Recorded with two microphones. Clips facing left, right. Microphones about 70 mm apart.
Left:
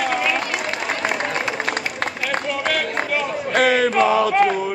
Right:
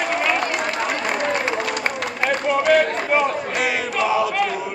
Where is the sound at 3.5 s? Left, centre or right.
Left.